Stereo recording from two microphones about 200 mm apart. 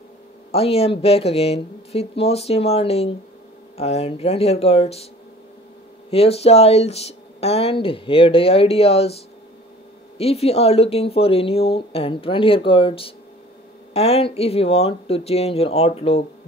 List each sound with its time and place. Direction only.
0.5 s speech: 30° left (ahead or behind)
6.0 s speech: 30° left (ahead or behind)